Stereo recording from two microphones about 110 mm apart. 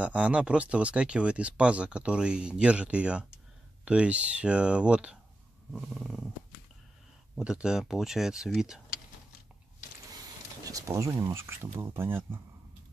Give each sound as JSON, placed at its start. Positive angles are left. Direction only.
{"t": 0.0, "sound": "speech", "side_deg": -10}
{"t": 7.3, "sound": "speech", "side_deg": -5}
{"t": 10.6, "sound": "speech", "side_deg": -35}